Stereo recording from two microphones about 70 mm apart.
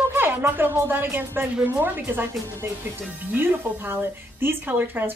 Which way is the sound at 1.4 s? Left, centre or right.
Centre.